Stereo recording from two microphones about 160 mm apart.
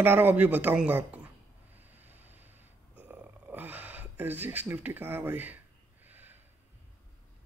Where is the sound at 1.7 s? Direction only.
10° right (ahead or behind).